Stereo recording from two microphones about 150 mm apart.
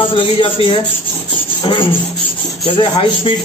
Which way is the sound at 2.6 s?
35° left (ahead or behind).